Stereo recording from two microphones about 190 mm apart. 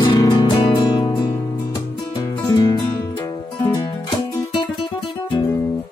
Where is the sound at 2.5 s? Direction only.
20° left (ahead or behind).